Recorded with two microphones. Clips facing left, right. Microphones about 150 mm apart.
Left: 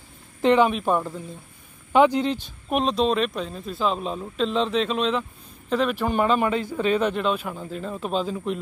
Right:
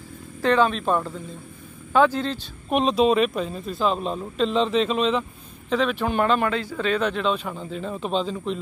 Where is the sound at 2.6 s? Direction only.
Centre (ahead or behind).